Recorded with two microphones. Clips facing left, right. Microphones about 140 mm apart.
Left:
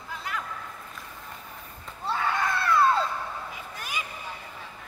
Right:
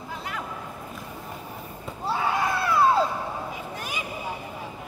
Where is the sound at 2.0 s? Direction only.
10° right (ahead or behind).